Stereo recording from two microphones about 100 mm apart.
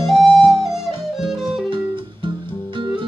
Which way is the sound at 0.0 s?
Centre (ahead or behind).